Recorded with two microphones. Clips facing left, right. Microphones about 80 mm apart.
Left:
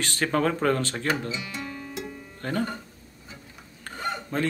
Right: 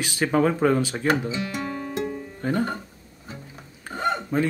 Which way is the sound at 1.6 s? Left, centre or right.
Right.